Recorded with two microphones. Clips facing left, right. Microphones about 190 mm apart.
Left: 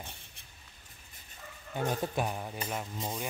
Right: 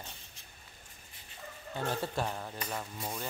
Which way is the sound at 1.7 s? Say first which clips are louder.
Left 2 dB; 15° left (ahead or behind).